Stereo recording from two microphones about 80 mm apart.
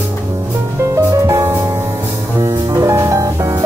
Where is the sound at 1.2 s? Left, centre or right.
Right.